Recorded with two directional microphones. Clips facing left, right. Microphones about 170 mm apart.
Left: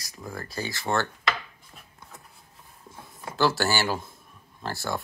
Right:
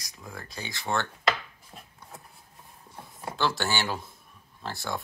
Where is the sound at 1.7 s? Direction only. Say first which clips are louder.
Right 5 dB; 35° right (ahead or behind).